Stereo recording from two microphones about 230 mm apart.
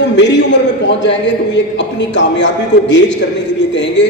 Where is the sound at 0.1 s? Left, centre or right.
Left.